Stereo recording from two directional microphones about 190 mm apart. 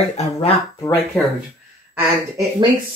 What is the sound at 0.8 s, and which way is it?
Speech, 10° left (ahead or behind).